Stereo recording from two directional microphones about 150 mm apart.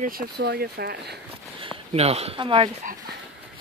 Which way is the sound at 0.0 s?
80° right.